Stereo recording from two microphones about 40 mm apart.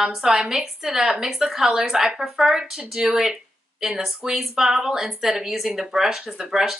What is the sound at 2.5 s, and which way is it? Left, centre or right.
A woman's voice, centre.